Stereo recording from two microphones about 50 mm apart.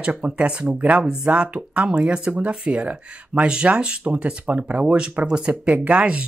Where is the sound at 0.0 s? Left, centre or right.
Right.